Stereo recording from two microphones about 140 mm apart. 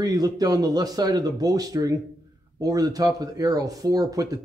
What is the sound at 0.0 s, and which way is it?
Speech, 25° right (ahead or behind).